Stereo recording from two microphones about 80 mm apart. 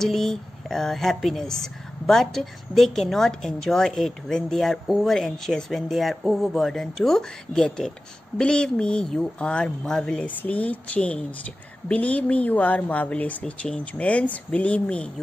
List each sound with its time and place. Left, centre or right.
0.0 s a woman's voice: centre
10.4 s a woman's voice: centre